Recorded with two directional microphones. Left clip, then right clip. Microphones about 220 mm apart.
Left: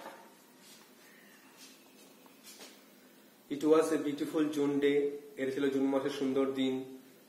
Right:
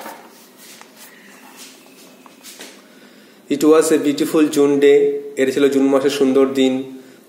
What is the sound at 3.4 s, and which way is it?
A man's voice, 45° right (ahead or behind).